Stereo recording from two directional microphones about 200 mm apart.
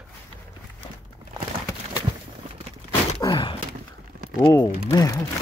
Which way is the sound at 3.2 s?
25° left (ahead or behind).